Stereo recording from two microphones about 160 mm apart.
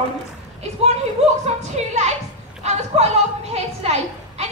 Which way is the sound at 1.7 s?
45° right (ahead or behind).